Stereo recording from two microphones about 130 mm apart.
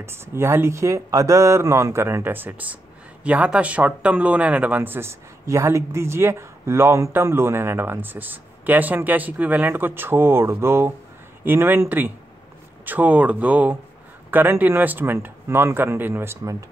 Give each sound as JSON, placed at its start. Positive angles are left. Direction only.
{"t": 0.0, "sound": "speech", "side_deg": -20}